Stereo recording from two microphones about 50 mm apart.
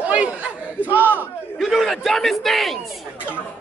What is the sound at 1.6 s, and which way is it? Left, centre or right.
A man's voice, centre.